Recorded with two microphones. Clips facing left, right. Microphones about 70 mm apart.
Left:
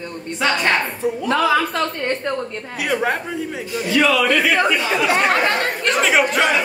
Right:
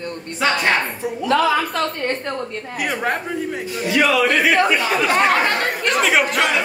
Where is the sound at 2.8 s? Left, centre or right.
Centre.